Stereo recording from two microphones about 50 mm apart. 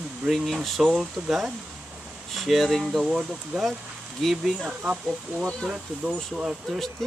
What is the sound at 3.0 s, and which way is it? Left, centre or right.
Speech, centre.